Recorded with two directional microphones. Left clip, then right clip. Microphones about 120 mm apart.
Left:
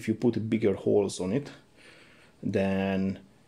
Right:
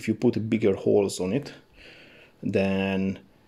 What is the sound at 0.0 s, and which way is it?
Speech, 15° right (ahead or behind).